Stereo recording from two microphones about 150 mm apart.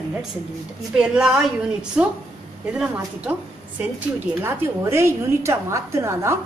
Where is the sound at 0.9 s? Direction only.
5° right (ahead or behind).